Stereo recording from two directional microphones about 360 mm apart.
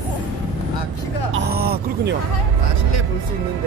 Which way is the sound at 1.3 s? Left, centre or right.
Right.